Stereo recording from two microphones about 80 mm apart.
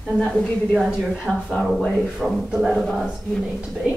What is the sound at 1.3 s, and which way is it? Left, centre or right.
Speech, centre.